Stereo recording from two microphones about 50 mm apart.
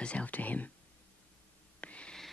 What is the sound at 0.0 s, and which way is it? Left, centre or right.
Whispering, left.